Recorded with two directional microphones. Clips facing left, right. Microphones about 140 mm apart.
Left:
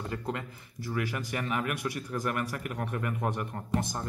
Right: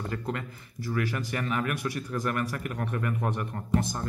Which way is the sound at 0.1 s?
20° left (ahead or behind).